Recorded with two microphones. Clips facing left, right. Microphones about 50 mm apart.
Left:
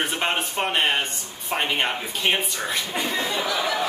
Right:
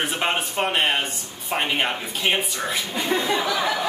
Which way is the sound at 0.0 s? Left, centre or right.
Centre.